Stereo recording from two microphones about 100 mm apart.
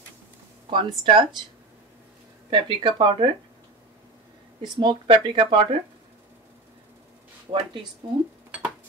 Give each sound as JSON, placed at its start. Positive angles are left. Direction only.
{"t": 0.7, "sound": "speech", "side_deg": -50}
{"t": 2.5, "sound": "speech", "side_deg": -50}
{"t": 4.7, "sound": "speech", "side_deg": -60}
{"t": 7.5, "sound": "speech", "side_deg": -35}